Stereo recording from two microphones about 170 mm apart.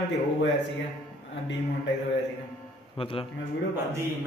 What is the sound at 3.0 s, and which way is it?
Speech, 35° left (ahead or behind).